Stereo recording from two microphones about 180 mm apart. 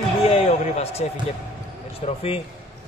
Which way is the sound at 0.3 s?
35° left (ahead or behind).